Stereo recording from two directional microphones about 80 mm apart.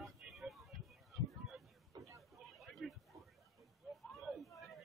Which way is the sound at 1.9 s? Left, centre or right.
Right.